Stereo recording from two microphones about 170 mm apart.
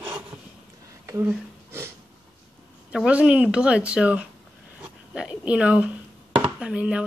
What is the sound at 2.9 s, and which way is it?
Speech, 5° right (ahead or behind).